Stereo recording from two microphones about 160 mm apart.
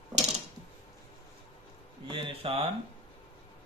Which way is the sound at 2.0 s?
35° right (ahead or behind).